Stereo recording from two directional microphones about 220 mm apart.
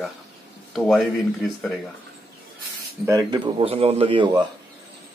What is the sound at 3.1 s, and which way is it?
Speech, 20° right (ahead or behind).